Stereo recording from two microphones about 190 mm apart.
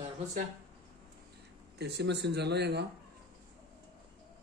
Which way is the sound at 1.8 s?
60° right (ahead or behind).